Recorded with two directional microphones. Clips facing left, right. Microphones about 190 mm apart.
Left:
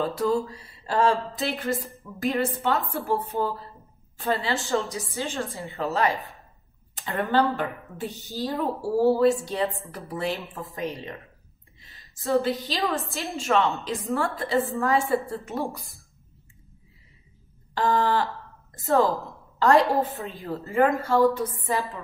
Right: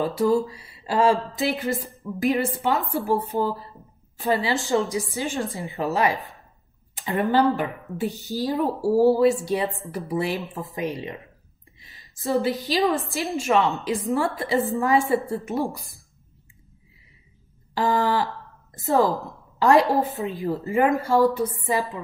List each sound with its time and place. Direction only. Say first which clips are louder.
0.0 s a woman's voice: right 3 dB; 10° right (ahead or behind)
12.2 s a woman's voice: even; 15° right (ahead or behind)
17.7 s a woman's voice: right 1 dB; 10° right (ahead or behind)
19.6 s a woman's voice: right 2 dB; 15° right (ahead or behind)